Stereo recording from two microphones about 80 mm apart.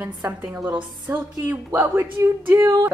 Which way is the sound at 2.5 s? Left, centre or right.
Right.